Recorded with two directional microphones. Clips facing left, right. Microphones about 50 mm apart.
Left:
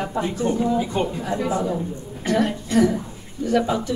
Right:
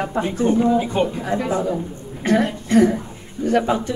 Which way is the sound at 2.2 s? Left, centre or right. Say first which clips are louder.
Right 3 dB; right.